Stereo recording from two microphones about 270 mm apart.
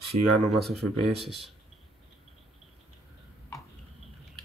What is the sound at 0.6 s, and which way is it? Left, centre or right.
Speech, centre.